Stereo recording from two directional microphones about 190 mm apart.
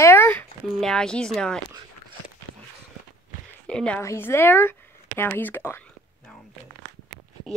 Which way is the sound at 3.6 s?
5° left (ahead or behind).